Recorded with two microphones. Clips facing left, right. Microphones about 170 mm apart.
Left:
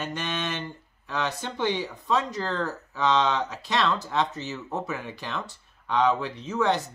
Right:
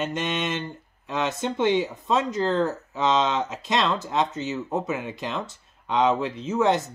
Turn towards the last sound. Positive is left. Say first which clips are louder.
# right 3 dB
turn(degrees=-20)  # may be behind; listen again after turning